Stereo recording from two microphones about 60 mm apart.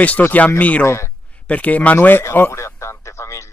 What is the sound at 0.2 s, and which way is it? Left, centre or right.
Speech, left.